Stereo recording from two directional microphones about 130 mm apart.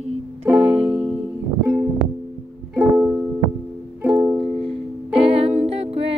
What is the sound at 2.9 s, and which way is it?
Music, 5° right (ahead or behind).